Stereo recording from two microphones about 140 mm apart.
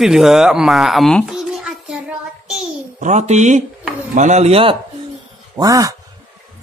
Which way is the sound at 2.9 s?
55° right (ahead or behind).